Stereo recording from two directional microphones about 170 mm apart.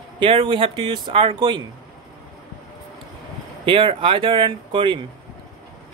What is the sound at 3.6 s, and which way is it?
Speech, 30° right (ahead or behind).